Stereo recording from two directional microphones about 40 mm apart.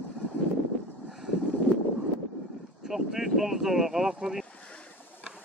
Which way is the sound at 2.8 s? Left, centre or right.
Centre.